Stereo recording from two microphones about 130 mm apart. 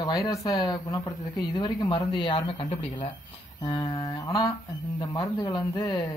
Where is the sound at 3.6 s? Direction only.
30° left (ahead or behind).